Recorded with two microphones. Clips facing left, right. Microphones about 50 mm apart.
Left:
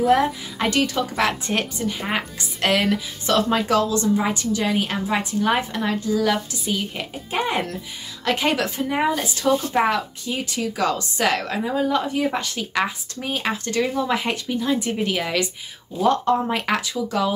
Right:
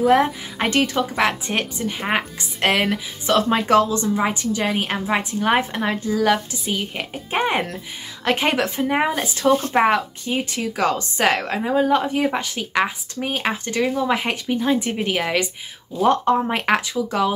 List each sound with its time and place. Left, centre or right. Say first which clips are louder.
0.2 s speech: right 1 dB; right
9.5 s speech: right 2 dB; right
9.8 s speech: right 3 dB; right